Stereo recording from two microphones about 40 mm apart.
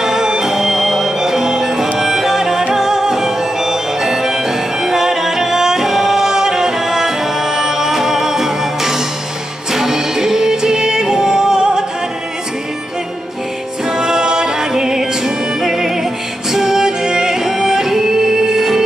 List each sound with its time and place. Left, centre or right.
0.0 s music: centre
13.8 s music: centre